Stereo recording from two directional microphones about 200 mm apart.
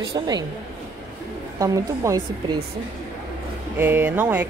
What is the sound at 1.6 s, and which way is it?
Speech, 15° right (ahead or behind).